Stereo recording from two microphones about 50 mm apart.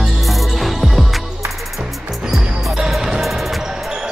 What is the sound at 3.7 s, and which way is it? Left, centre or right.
Basketball bounce, centre.